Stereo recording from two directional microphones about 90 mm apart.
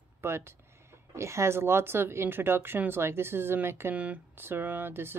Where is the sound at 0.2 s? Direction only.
25° right (ahead or behind).